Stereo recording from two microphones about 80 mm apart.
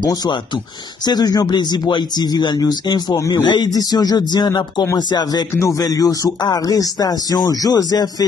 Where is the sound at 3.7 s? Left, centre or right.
Left.